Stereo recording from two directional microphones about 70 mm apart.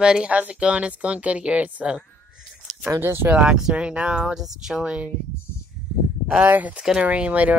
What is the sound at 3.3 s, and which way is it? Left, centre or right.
Speech, centre.